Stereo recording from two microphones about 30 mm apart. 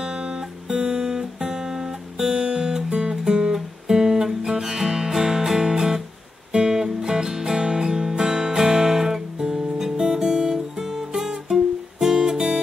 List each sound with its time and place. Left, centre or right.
0.0 s music: right
3.8 s guitar: right
4.6 s music: centre
7.6 s guitar: right
10.1 s music: right
12.0 s guitar: centre